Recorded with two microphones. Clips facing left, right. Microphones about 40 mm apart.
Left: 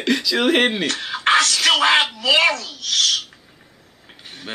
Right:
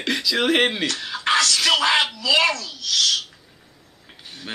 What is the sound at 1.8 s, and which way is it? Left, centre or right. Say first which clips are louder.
Speech: left 3 dB; left.